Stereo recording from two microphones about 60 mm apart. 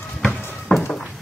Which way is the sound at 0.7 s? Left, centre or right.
Centre.